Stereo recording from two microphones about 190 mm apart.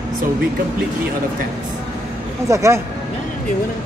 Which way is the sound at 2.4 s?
15° right (ahead or behind).